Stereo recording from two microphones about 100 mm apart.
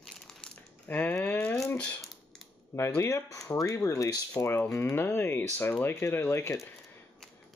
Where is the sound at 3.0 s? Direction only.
30° left (ahead or behind).